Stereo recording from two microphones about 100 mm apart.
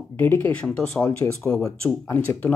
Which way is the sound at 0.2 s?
20° left (ahead or behind).